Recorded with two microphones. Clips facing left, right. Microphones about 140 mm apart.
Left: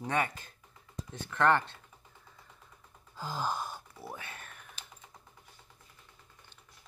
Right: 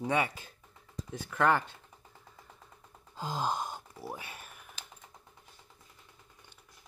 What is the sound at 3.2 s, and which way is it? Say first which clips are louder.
Gasp: right 2 dB; 15° right (ahead or behind).